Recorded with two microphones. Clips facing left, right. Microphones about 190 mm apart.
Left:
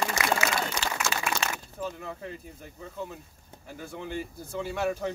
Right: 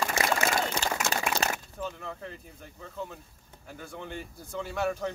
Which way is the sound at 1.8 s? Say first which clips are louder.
Left 5 dB; 5° left (ahead or behind).